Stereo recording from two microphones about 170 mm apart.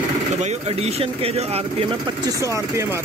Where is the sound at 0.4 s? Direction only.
40° right (ahead or behind).